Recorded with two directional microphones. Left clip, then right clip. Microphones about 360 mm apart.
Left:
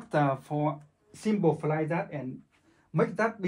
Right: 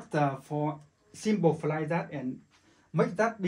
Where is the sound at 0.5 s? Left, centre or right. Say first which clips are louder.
Left 1 dB; left.